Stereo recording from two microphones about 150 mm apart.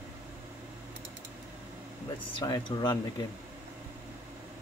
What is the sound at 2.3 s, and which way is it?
Speech, 30° left (ahead or behind).